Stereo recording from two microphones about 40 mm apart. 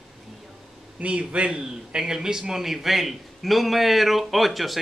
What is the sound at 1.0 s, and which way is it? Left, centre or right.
Speech, right.